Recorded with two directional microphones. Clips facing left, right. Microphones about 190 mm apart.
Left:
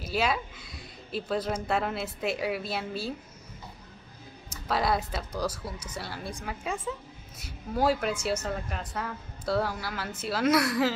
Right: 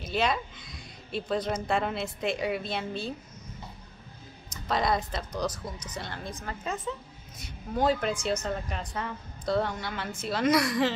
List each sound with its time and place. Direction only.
0.0 s a woman's voice: 5° left (ahead or behind)
4.5 s speech: 5° left (ahead or behind)